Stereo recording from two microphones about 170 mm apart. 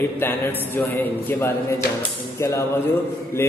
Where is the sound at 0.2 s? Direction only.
10° left (ahead or behind).